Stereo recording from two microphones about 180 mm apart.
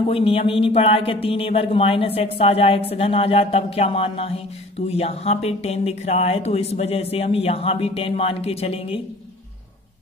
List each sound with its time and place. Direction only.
0.0 s speech: 30° left (ahead or behind)